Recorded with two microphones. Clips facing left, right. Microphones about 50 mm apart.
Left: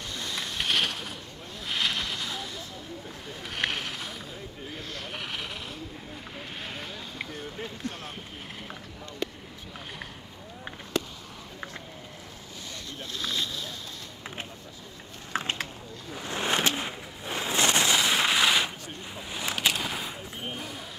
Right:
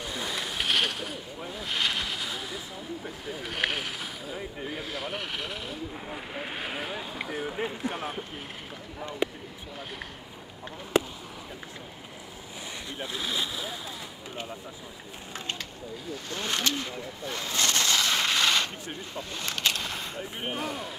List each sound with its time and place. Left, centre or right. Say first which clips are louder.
0.0 s a sound: right 2 dB; centre
1.4 s speech: even; centre
6.0 s speech: right 5 dB; right
9.2 s speech: right 4 dB; centre
10.9 s speech: right 5 dB; right
12.9 s speech: right 1 dB; centre
16.3 s vehicle: left 3 dB; left
19.1 s speech: left 3 dB; centre
20.2 s speech: right 3 dB; right
20.5 s speech: right 5 dB; centre